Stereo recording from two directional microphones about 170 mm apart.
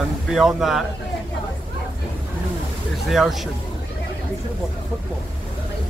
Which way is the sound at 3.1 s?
Centre (ahead or behind).